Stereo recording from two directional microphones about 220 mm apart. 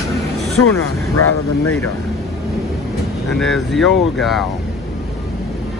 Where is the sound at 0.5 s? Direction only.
90° left.